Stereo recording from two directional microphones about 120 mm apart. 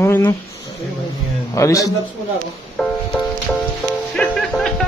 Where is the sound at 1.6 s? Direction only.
25° left (ahead or behind).